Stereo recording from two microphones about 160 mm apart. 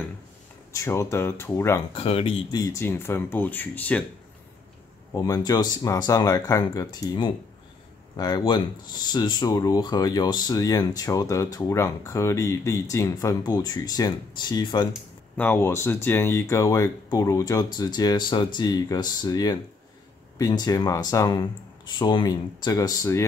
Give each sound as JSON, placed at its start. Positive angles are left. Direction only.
{"t": 0.7, "sound": "speech", "side_deg": 15}
{"t": 2.0, "sound": "speech", "side_deg": 35}
{"t": 5.1, "sound": "speech", "side_deg": 20}
{"t": 15.3, "sound": "speech", "side_deg": 10}